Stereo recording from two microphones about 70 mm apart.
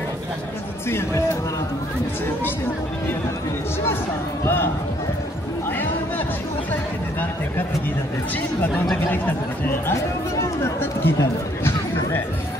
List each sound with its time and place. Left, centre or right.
0.8 s speech: left
6.7 s speech: left
9.7 s speech: left